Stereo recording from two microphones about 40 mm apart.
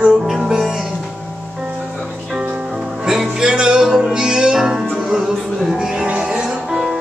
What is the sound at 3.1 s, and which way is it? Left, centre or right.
Music, centre.